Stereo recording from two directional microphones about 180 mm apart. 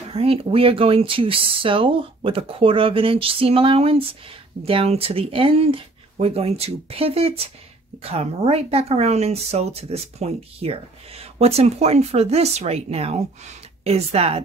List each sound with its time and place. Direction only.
0.1 s a woman's voice: 35° right (ahead or behind)